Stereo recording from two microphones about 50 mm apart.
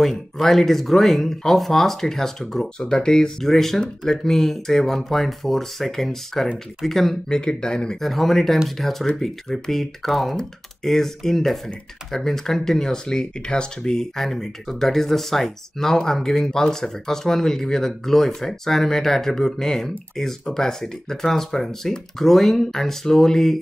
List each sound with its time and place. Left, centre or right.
0.0 s speech: centre
8.0 s speech: centre